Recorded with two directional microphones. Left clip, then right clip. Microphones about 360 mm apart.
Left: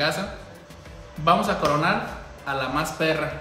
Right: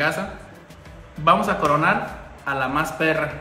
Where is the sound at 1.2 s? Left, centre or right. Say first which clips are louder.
Right 3 dB; centre.